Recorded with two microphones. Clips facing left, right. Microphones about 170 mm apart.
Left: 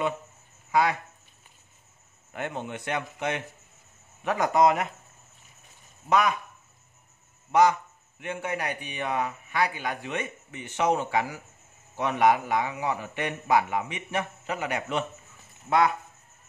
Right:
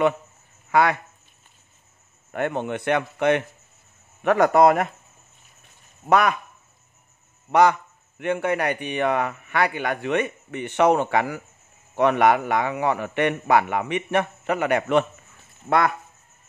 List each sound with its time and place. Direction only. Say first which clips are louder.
0.7 s speech: right 4 dB; 65° right (ahead or behind)
2.3 s a man's voice: right 8 dB; 60° right (ahead or behind)
6.0 s a man's voice: right 4 dB; 65° right (ahead or behind)
7.5 s a man's voice: right 3 dB; 60° right (ahead or behind)